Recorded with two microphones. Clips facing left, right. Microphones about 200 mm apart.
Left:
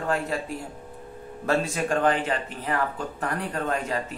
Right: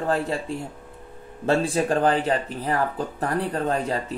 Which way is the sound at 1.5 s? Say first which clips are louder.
Right 3 dB; 30° right (ahead or behind).